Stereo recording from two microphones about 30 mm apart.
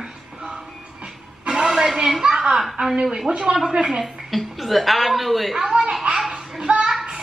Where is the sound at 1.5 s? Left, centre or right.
Right.